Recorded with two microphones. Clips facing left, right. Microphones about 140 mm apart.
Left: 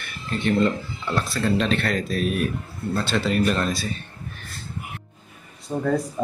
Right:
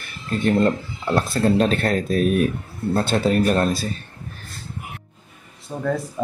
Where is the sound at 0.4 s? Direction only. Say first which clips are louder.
Right 2 dB; 45° right (ahead or behind).